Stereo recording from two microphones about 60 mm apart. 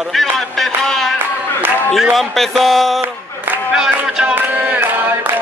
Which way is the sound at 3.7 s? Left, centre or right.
Centre.